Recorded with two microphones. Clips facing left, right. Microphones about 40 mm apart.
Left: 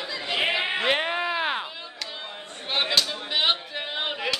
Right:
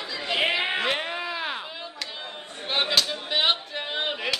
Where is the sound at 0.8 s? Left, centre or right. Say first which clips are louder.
Left 3 dB; centre.